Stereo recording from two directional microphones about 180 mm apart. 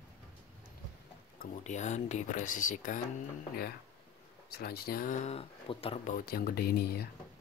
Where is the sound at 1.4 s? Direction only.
40° left (ahead or behind).